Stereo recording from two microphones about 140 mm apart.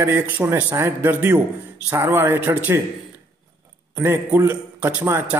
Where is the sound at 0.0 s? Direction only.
15° right (ahead or behind).